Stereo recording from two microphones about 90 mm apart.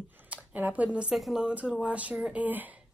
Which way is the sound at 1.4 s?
15° right (ahead or behind).